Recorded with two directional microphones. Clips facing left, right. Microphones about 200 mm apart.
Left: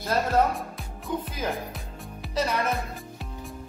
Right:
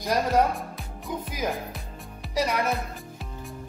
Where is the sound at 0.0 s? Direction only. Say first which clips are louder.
Right 1 dB; 15° right (ahead or behind).